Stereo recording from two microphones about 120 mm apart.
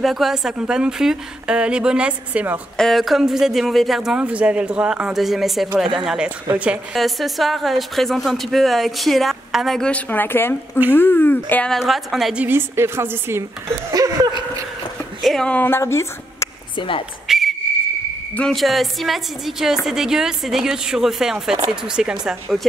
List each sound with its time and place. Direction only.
0.0 s a woman's voice: centre (ahead or behind)
2.8 s a woman's voice: centre (ahead or behind)
11.7 s speech: centre (ahead or behind)
12.4 s a woman's voice: 20° right (ahead or behind)
15.2 s speech: 5° left (ahead or behind); by 16.4 s 25° left (ahead or behind)
16.7 s speech: 45° left (ahead or behind)
17.3 s whistle: centre (ahead or behind)
18.3 s speech: 5° left (ahead or behind)